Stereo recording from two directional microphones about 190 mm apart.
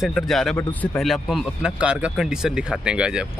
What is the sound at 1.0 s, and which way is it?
Speech, centre (ahead or behind).